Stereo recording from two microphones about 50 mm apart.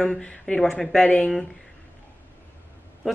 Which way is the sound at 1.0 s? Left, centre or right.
Left.